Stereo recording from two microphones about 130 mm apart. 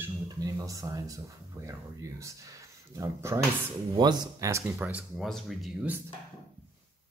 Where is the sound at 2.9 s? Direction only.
25° right (ahead or behind).